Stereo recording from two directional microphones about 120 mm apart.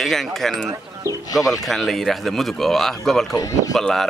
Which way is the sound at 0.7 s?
25° right (ahead or behind).